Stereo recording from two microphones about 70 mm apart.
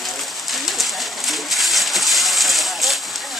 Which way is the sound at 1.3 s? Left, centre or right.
Centre.